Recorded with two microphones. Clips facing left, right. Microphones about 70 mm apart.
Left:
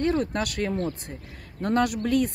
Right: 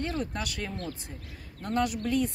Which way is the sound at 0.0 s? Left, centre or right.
Left.